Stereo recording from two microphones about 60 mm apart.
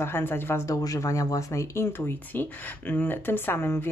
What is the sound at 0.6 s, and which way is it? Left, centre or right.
Speech, left.